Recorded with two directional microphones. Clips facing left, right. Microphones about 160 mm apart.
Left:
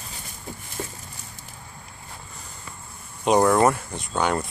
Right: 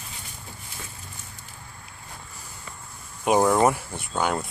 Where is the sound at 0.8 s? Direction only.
40° left (ahead or behind).